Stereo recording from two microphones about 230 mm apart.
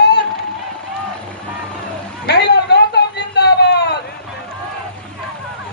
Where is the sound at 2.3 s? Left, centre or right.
Left.